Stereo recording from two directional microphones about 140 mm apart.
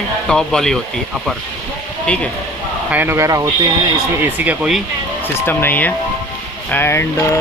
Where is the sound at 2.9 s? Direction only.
15° right (ahead or behind).